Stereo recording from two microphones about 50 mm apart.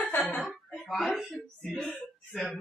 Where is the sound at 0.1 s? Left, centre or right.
Left.